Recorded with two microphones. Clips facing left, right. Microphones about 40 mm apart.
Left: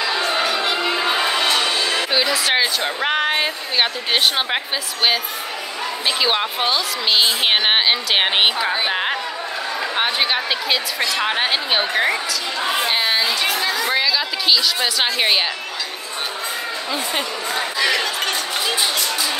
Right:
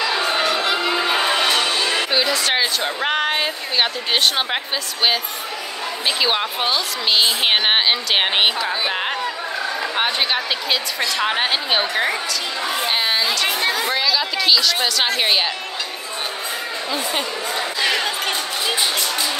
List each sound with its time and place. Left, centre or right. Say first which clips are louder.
0.2 s a sound: even; centre
0.5 s music: right 1 dB; centre
1.9 s speech: even; centre
6.0 s a woman's voice: even; centre
13.5 s speech: even; right
13.8 s a woman's voice: left 1 dB; centre
16.9 s speech: even; centre
17.9 s a sound: left 1 dB; right